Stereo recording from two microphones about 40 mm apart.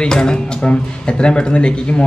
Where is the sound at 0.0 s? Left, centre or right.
Centre.